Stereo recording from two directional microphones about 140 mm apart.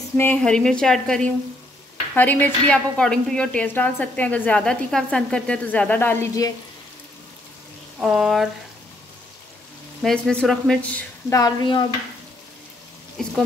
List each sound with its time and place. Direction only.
0.2 s a woman's voice: 10° left (ahead or behind)
8.0 s speech: centre (ahead or behind)
10.0 s a woman's voice: 5° left (ahead or behind)
11.3 s stir: 25° left (ahead or behind)
13.2 s speech: 5° left (ahead or behind)